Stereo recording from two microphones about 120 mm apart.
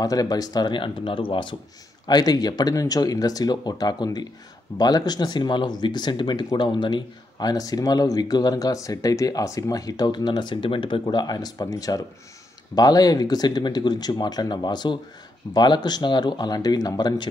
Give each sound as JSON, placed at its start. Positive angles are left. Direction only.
{"t": 0.0, "sound": "speech", "side_deg": 30}
{"t": 2.0, "sound": "speech", "side_deg": 35}